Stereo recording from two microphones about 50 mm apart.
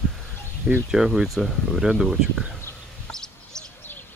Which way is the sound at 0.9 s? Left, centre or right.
Centre.